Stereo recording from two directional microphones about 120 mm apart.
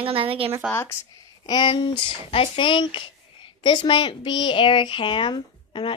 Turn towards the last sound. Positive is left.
turn(degrees=45)  # may be behind; listen again after turning